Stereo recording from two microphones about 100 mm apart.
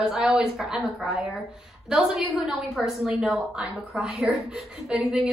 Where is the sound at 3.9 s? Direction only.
5° right (ahead or behind).